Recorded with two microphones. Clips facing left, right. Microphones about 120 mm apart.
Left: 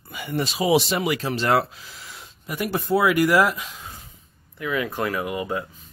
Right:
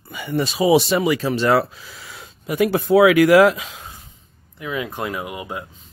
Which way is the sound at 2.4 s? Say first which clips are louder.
Right 7 dB; 90° right.